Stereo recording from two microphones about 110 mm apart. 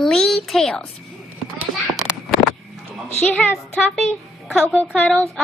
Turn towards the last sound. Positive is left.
turn(degrees=10)  # may be behind; listen again after turning